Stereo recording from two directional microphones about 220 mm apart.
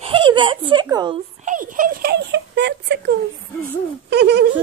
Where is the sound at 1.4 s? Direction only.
35° right (ahead or behind).